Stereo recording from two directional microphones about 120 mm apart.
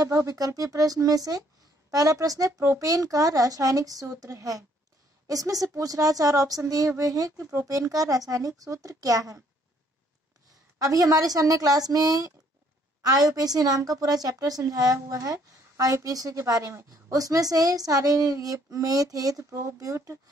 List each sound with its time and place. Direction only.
0.0 s a woman's voice: 30° right (ahead or behind)
10.8 s a woman's voice: 30° right (ahead or behind)